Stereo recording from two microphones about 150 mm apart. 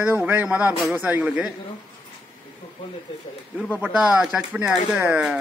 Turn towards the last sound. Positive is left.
turn(degrees=-10)  # may be behind; listen again after turning